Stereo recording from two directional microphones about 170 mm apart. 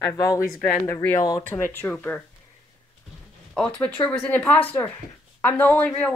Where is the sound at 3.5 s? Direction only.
5° left (ahead or behind).